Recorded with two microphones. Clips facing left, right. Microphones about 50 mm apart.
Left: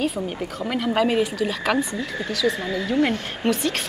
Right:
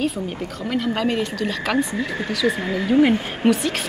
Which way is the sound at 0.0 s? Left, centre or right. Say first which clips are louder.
Right 1 dB; centre.